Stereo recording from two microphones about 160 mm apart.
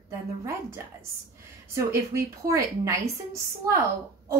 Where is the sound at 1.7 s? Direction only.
20° right (ahead or behind).